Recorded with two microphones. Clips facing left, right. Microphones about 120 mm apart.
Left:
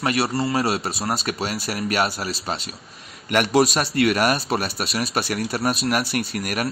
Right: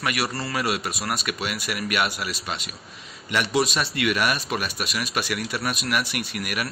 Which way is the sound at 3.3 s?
50° left (ahead or behind).